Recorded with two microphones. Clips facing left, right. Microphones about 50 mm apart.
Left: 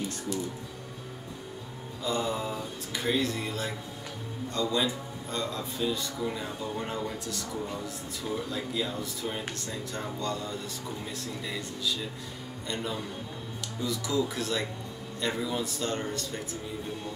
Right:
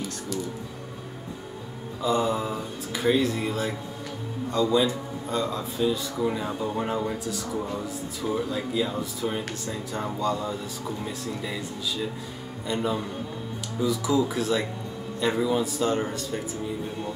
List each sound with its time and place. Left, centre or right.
2.0 s a man's voice: centre